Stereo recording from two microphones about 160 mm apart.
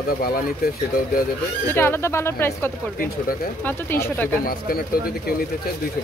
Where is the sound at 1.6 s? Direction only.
15° left (ahead or behind).